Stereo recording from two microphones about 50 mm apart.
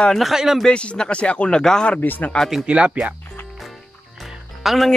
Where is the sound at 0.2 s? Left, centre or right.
Centre.